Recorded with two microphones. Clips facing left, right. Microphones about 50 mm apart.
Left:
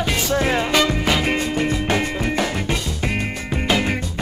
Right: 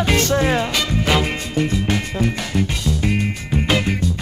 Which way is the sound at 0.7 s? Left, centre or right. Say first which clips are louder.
Left 1 dB; left.